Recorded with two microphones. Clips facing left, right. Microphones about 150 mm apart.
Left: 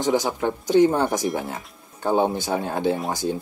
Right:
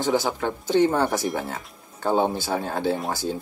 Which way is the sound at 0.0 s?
15° left (ahead or behind).